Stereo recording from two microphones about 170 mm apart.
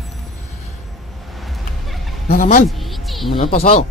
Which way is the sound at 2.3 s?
50° left (ahead or behind).